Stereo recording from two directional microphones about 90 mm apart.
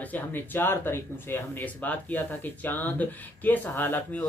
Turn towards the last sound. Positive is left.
turn(degrees=20)  # may be behind; listen again after turning